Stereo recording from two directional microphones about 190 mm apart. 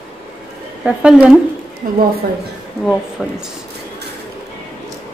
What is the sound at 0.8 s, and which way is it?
Speech, 5° right (ahead or behind).